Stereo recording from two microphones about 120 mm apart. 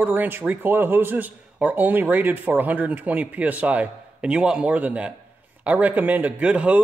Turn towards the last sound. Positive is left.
turn(degrees=-10)  # may be behind; listen again after turning